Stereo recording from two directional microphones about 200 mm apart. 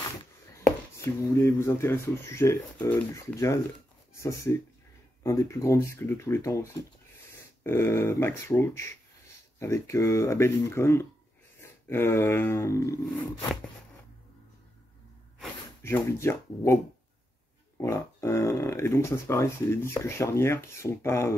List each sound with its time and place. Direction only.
0.7 s speech: 15° left (ahead or behind)
15.8 s speech: 10° left (ahead or behind)
17.7 s speech: 15° left (ahead or behind)